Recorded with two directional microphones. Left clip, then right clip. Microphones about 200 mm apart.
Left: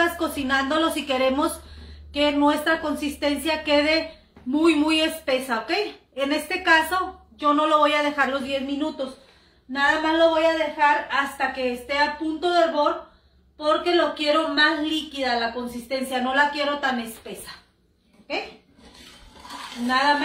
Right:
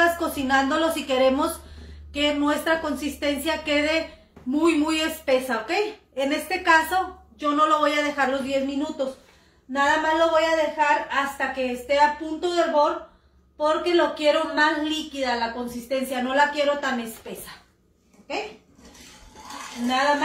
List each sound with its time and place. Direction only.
0.0 s a woman's voice: 15° left (ahead or behind)